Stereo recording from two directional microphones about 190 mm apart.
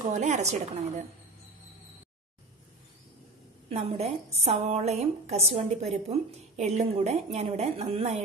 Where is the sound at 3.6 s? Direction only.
35° right (ahead or behind).